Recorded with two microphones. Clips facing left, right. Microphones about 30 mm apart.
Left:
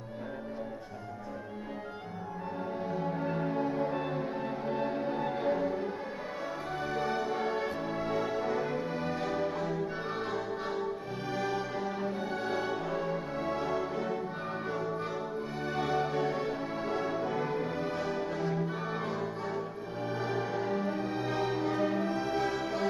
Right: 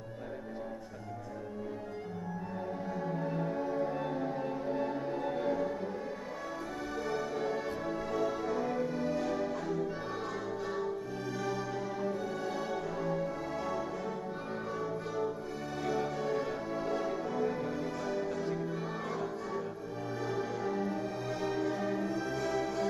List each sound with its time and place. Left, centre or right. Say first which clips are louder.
3.0 s music: left 1 dB; left
6.9 s music: left 3 dB; left
11.3 s music: left 4 dB; left
20.2 s music: left 1 dB; left